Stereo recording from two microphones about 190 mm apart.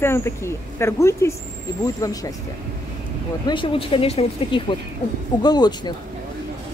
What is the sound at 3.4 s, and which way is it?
Speech, 25° left (ahead or behind).